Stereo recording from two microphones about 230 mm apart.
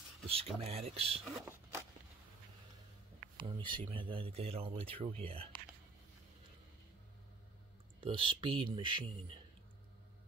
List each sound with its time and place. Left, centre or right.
0.6 s speech: right
1.4 s speech: centre
3.3 s speech: centre
8.0 s speech: right